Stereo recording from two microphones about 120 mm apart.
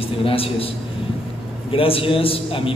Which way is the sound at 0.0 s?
50° left (ahead or behind).